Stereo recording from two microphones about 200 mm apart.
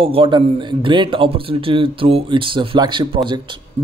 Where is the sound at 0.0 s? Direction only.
25° right (ahead or behind).